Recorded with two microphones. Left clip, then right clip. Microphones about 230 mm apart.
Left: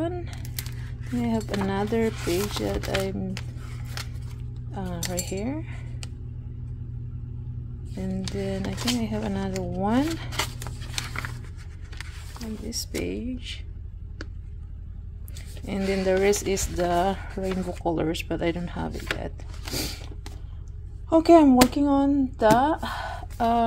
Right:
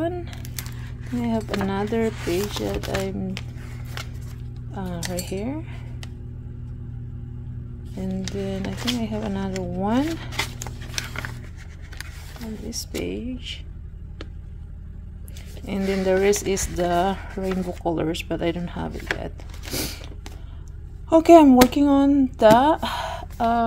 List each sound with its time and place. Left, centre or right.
0.0 s a sound: centre
1.0 s speech: centre
7.9 s speech: centre
8.6 s speech: centre
8.9 s speech: centre
9.8 s music: centre
12.6 s speech: centre
15.6 s speech: centre
23.3 s a sound: centre